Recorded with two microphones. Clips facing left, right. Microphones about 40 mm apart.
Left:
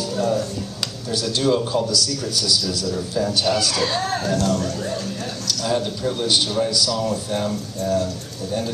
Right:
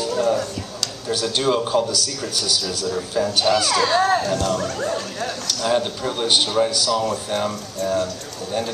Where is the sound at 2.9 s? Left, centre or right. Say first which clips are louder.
Right 2 dB; right.